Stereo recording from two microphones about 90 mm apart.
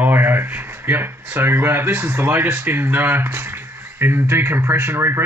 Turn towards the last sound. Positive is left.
turn(degrees=-30)  # may be behind; listen again after turning